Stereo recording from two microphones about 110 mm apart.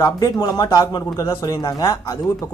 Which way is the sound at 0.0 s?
40° left (ahead or behind).